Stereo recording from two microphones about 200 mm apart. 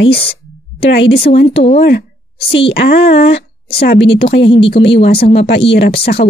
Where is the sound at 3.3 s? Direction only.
30° left (ahead or behind).